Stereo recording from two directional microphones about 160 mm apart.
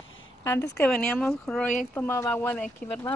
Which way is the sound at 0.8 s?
10° left (ahead or behind).